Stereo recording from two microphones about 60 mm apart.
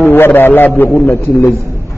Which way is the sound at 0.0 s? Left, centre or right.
Left.